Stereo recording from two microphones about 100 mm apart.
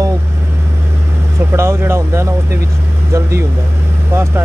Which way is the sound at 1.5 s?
25° right (ahead or behind).